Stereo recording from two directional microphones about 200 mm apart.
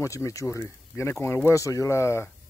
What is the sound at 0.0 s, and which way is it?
Speech, 15° left (ahead or behind).